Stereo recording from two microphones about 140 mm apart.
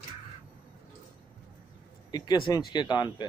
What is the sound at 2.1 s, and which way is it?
Speech, 30° left (ahead or behind).